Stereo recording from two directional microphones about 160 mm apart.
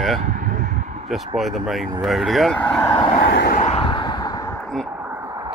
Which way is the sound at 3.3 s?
75° left (ahead or behind).